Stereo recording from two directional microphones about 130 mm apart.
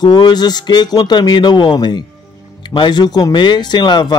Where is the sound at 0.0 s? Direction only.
35° left (ahead or behind).